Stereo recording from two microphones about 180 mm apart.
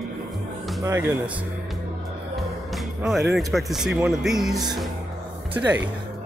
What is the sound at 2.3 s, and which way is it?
Music, centre (ahead or behind).